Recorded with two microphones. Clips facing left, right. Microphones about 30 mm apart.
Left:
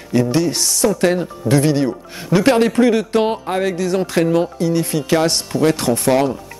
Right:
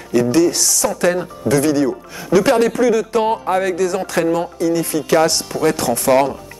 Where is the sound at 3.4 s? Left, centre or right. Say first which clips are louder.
Right 2 dB; centre.